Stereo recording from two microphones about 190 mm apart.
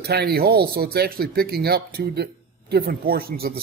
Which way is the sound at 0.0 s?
55° right (ahead or behind).